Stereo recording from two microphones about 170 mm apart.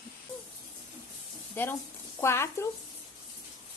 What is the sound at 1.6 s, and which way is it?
A woman's voice, 10° left (ahead or behind).